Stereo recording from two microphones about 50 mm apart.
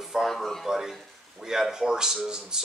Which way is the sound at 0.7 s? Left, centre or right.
Centre.